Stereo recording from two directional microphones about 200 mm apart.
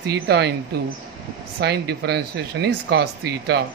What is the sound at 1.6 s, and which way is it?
Speech, 55° right (ahead or behind).